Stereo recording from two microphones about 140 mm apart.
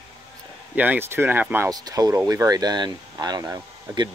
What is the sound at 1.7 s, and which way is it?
Speech, 25° right (ahead or behind).